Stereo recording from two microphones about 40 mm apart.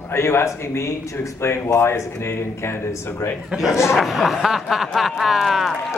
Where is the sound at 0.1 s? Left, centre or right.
Left.